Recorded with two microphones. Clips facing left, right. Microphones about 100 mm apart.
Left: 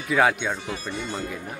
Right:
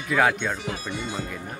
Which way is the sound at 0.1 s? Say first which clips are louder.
Left 1 dB; 5° left (ahead or behind).